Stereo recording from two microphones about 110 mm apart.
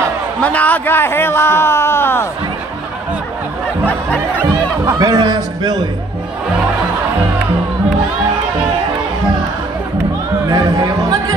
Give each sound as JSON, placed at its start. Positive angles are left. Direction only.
{"t": 0.4, "sound": "a man's voice", "side_deg": 15}
{"t": 4.8, "sound": "a sound", "side_deg": -35}
{"t": 10.5, "sound": "music", "side_deg": -35}